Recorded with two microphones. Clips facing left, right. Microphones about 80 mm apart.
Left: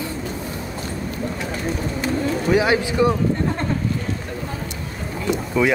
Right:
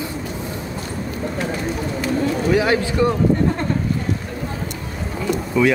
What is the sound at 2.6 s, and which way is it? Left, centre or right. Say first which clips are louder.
Speech: left 1 dB; centre.